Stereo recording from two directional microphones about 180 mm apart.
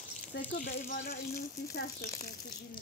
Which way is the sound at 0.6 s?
50° left (ahead or behind).